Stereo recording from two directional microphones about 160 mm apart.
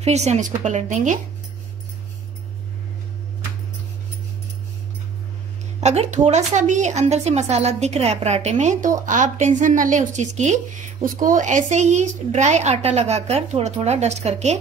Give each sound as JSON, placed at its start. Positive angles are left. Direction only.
{"t": 0.0, "sound": "a woman's voice", "side_deg": -45}
{"t": 5.8, "sound": "a woman's voice", "side_deg": -45}